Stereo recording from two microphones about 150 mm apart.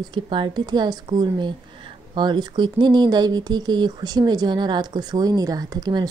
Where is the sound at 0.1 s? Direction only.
30° right (ahead or behind).